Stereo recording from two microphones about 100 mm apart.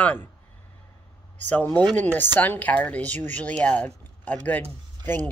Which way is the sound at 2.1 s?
20° left (ahead or behind).